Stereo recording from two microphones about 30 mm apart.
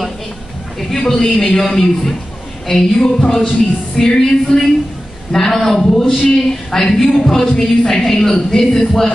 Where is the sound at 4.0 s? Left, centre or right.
Centre.